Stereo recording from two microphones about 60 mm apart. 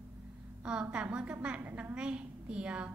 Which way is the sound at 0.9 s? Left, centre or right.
Centre.